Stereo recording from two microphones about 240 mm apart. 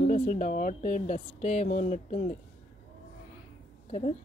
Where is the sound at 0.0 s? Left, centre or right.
Left.